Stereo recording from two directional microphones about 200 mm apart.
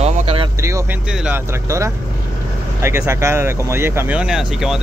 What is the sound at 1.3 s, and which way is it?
Speech, 15° right (ahead or behind).